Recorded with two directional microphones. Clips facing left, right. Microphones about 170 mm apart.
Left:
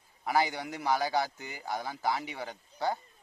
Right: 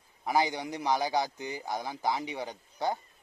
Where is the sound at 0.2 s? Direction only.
15° right (ahead or behind).